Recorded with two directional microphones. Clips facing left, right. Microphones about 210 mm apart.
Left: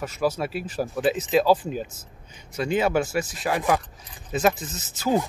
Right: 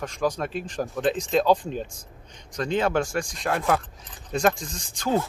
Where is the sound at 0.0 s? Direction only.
5° left (ahead or behind).